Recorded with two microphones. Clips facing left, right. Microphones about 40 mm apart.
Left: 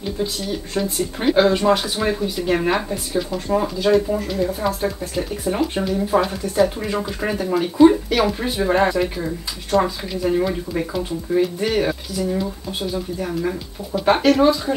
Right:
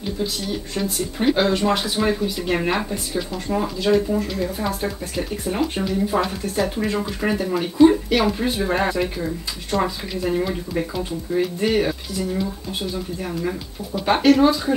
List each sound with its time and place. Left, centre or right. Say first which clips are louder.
1.2 s speech: left 3 dB; centre